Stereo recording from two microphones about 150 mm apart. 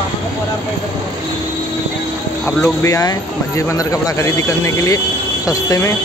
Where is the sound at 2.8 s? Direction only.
25° left (ahead or behind).